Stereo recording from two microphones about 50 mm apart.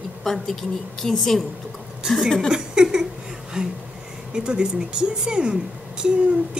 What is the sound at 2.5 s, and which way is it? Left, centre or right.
A woman's voice, centre.